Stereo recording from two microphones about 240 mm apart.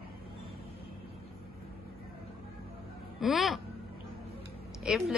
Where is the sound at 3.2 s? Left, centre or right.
Centre.